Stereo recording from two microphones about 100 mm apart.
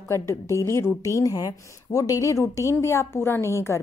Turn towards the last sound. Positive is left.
turn(degrees=25)  # may be behind; listen again after turning